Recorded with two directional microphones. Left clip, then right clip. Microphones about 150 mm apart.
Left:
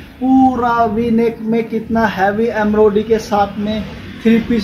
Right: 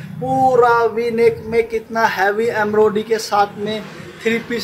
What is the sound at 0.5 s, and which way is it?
A man's voice, 20° right (ahead or behind).